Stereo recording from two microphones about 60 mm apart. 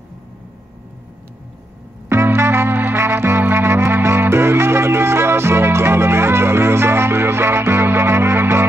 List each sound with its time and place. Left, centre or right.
2.0 s music: right